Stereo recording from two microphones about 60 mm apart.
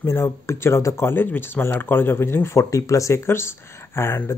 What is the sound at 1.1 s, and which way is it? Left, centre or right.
Speech, left.